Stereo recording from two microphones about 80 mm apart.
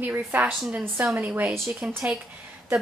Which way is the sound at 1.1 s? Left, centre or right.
Right.